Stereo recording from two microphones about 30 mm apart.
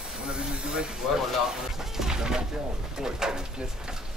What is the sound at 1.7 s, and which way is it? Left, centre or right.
Speech, centre.